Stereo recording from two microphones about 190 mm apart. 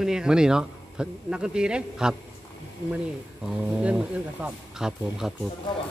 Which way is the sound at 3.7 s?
5° right (ahead or behind).